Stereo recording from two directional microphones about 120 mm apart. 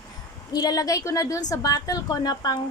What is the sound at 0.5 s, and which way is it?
A woman's voice, 30° left (ahead or behind).